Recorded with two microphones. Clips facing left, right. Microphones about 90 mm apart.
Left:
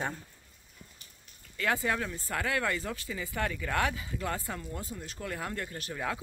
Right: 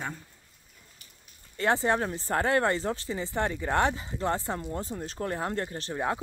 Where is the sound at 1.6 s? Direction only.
30° right (ahead or behind).